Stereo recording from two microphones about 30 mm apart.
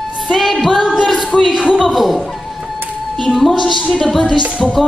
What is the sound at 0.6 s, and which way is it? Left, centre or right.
Music, centre.